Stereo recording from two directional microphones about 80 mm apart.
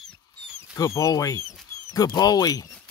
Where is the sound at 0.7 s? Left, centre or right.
Left.